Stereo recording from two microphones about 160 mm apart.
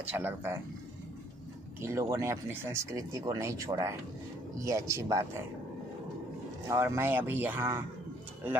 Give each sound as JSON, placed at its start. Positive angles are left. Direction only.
{"t": 0.0, "sound": "speech", "side_deg": -10}
{"t": 1.8, "sound": "speech", "side_deg": -20}
{"t": 6.7, "sound": "speech", "side_deg": -15}